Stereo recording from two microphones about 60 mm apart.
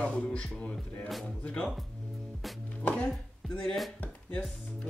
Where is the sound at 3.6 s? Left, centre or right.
Centre.